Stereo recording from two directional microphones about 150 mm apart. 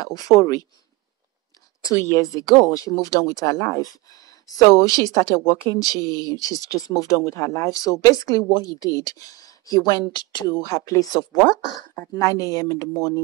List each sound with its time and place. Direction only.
0.0 s speech: 25° left (ahead or behind)
1.8 s speech: 20° left (ahead or behind)